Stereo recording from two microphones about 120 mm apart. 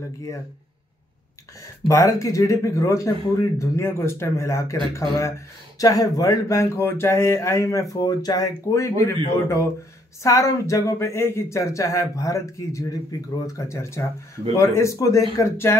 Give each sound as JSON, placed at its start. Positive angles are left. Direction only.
{"t": 1.9, "sound": "speech", "side_deg": 25}